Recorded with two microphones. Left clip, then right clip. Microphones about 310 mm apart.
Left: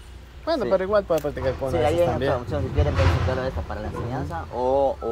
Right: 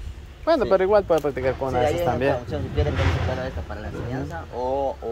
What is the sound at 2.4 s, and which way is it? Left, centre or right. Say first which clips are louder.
Speech: left 1 dB; centre.